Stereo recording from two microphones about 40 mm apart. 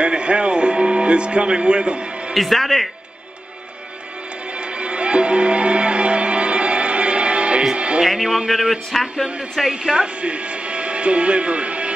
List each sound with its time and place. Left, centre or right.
0.0 s music: right
2.3 s speech: centre
4.6 s music: right
8.0 s a man's voice: centre
10.0 s speech: right